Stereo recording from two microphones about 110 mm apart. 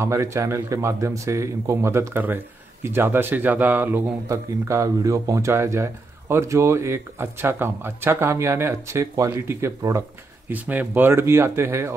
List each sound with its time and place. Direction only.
0.0 s speech: 25° right (ahead or behind)
10.5 s speech: 15° right (ahead or behind)